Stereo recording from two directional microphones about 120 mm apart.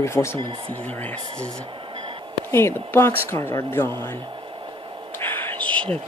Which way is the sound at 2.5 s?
20° left (ahead or behind).